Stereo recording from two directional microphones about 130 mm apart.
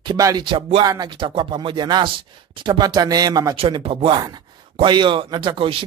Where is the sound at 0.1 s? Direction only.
30° right (ahead or behind).